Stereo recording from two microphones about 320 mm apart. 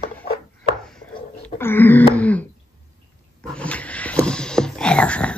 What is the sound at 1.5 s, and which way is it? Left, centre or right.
Throat clearing, centre.